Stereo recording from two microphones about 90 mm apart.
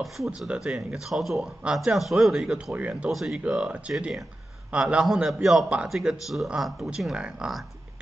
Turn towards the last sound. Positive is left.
turn(degrees=-10)  # may be behind; listen again after turning